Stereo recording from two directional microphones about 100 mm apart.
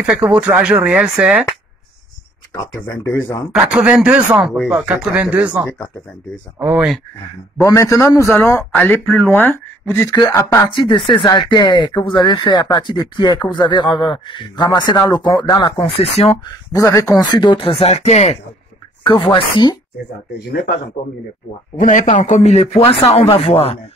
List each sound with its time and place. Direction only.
0.0 s speech: 10° right (ahead or behind)
3.0 s a man's voice: 30° left (ahead or behind)
3.5 s speech: 10° right (ahead or behind)
4.7 s speech: 15° right (ahead or behind)
6.6 s speech: 15° right (ahead or behind)
7.5 s a man's voice: 30° left (ahead or behind)
10.7 s speech: 55° left (ahead or behind)
15.7 s speech: 70° left (ahead or behind); by 16.3 s 90° left
16.4 s a man's voice: 35° left (ahead or behind)
17.2 s speech: 50° left (ahead or behind)
17.6 s speech: 75° left (ahead or behind); by 18.4 s 90° left
19.0 s speech: 55° left (ahead or behind)
22.4 s speech: 90° left; by 23.8 s 75° left (ahead or behind)